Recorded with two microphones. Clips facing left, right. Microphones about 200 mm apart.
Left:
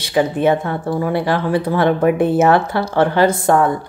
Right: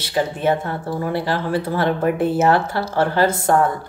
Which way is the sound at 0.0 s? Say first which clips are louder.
Left 5 dB; 15° left (ahead or behind).